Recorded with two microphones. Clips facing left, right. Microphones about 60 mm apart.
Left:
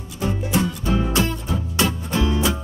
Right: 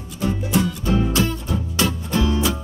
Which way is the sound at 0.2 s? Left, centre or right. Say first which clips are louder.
Right 1 dB; left.